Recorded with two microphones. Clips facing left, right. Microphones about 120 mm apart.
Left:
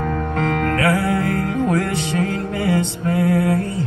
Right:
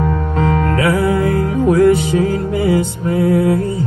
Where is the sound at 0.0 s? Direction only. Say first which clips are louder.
Right 4 dB; 25° right (ahead or behind).